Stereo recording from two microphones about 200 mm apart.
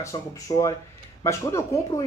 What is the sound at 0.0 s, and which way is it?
Speech, 15° left (ahead or behind).